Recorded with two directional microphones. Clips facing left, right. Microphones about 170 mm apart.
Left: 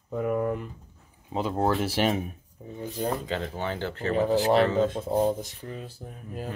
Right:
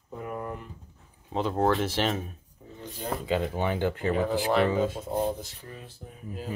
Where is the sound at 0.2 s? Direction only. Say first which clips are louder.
Left 9 dB; 70° left (ahead or behind).